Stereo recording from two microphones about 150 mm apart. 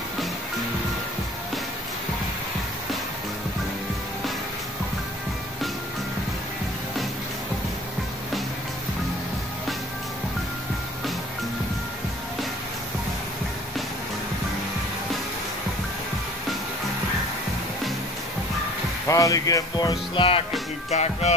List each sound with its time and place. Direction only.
19.0 s speech: 20° left (ahead or behind)
20.9 s music: 45° left (ahead or behind)